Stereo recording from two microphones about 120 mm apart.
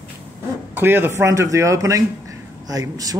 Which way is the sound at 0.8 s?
15° right (ahead or behind).